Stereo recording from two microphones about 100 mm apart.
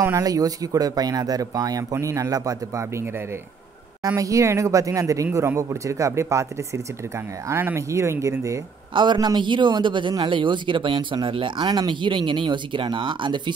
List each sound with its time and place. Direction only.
0.0 s speech: 35° right (ahead or behind)
4.2 s speech: 30° right (ahead or behind)
7.4 s speech: 25° right (ahead or behind)
8.9 s a man's voice: 50° right (ahead or behind)